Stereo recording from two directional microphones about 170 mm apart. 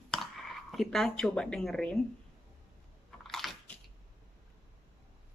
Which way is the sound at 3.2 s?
Centre (ahead or behind).